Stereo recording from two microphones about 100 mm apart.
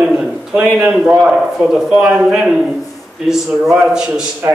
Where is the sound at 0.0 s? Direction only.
10° right (ahead or behind).